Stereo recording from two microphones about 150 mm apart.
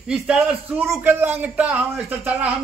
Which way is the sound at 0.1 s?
5° right (ahead or behind).